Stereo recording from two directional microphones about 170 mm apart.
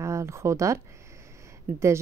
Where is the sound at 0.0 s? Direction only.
15° right (ahead or behind).